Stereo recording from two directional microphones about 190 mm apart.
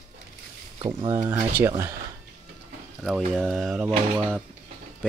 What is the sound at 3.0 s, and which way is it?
Speech, centre (ahead or behind).